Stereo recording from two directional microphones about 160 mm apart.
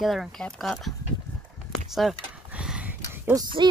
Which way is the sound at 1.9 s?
5° right (ahead or behind).